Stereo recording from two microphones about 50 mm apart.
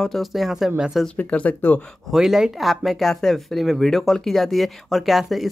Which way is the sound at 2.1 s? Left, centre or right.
Centre.